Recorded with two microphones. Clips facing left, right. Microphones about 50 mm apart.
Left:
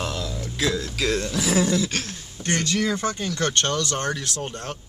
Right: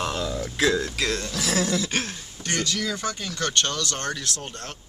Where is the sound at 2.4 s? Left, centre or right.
Left.